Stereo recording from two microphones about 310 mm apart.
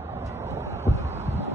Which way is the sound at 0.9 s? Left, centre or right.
Right.